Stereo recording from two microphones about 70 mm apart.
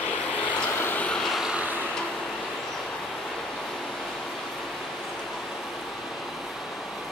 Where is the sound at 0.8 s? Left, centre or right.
Left.